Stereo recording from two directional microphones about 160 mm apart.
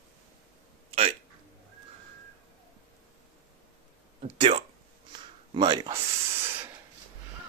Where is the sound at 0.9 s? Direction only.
40° right (ahead or behind).